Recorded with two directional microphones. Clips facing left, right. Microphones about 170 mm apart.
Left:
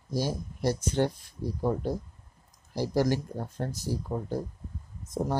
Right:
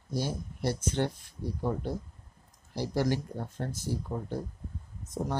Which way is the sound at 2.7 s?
40° left (ahead or behind).